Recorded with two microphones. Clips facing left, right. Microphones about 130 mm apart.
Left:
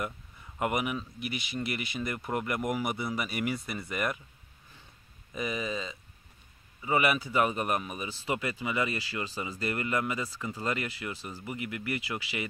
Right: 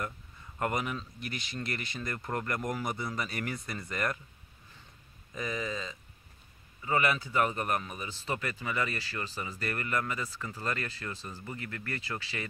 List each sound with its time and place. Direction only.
0.6 s speech: 10° left (ahead or behind)
5.3 s speech: 15° left (ahead or behind)